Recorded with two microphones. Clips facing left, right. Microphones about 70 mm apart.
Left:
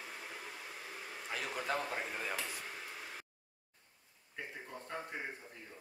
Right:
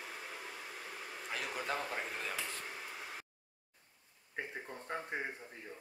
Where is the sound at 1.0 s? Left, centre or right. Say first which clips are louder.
Even; centre.